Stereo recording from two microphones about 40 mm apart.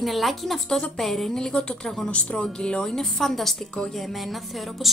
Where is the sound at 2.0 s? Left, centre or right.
Left.